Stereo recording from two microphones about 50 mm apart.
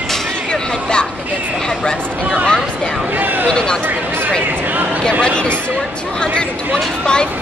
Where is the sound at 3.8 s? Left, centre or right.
Right.